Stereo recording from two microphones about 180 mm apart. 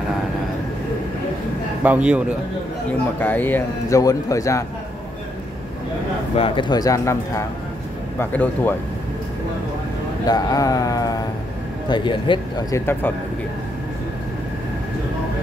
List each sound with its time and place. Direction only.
1.8 s a man's voice: 5° right (ahead or behind)
3.2 s a man's voice: 10° left (ahead or behind)
6.3 s a man's voice: 30° left (ahead or behind); by 8.7 s 10° left (ahead or behind)
10.2 s speech: 20° left (ahead or behind)
12.7 s a man's voice: 10° left (ahead or behind)